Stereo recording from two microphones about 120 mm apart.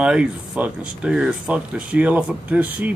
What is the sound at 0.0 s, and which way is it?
Speech, 10° right (ahead or behind).